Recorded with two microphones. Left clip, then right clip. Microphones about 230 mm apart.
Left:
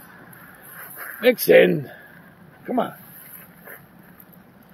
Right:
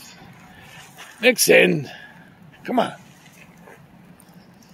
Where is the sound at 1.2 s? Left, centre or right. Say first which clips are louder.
Even; centre.